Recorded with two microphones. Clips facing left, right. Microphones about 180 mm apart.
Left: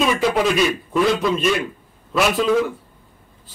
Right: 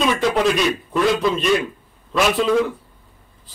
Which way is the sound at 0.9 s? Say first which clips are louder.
Even; 5° left (ahead or behind).